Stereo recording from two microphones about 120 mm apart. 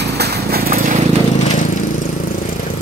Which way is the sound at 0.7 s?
90° right.